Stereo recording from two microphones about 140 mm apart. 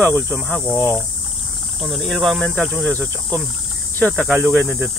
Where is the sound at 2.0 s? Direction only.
Centre (ahead or behind).